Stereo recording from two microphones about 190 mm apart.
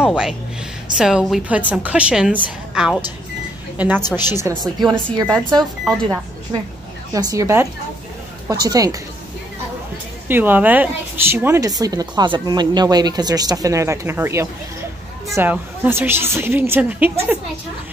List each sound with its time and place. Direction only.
0.0 s a woman's voice: 5° right (ahead or behind); by 5.4 s 20° right (ahead or behind)
7.1 s a woman's voice: 20° right (ahead or behind)
10.2 s a woman's voice: 10° right (ahead or behind)